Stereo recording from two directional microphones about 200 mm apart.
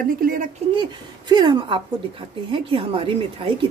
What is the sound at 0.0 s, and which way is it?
Speech, 45° right (ahead or behind).